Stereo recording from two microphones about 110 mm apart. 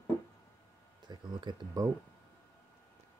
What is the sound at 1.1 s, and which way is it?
Speech, 40° right (ahead or behind).